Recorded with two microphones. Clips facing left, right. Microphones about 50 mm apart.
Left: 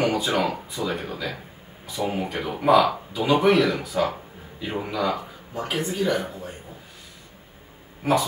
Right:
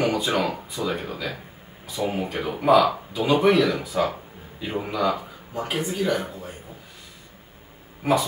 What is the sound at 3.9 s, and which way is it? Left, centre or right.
Speech, centre.